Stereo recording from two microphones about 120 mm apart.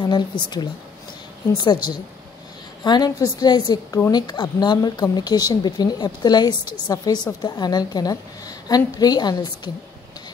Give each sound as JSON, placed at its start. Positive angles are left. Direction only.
{"t": 0.0, "sound": "speech", "side_deg": 35}